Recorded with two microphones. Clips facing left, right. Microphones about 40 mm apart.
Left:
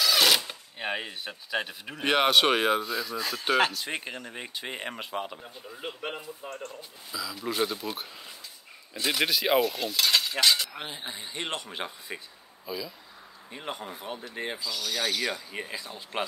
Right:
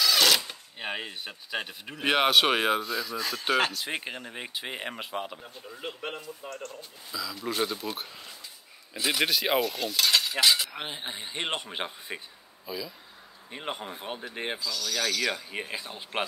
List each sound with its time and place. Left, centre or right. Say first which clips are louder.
0.0 s a sound: even; centre
0.7 s speech: left 2 dB; centre
10.8 s speech: right 1 dB; right
12.6 s speech: left 1 dB; centre
13.5 s speech: right 1 dB; right
14.6 s speech: even; centre
15.5 s speech: right 1 dB; centre